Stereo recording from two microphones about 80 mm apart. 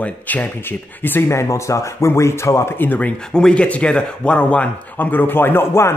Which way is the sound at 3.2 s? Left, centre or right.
Centre.